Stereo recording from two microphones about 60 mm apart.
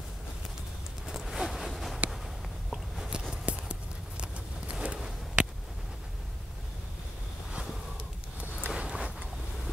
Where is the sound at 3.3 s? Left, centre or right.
Centre.